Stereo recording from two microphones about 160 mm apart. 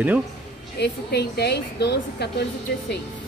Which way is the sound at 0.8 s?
90° left.